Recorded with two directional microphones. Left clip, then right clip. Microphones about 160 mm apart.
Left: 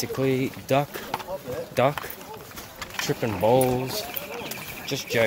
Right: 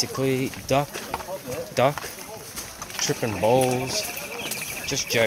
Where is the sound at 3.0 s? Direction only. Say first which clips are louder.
Right 1 dB; 20° left (ahead or behind).